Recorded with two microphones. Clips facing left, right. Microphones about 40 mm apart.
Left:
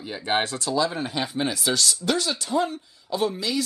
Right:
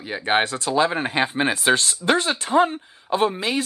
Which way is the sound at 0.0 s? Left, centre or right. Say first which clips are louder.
Right 4 dB; right.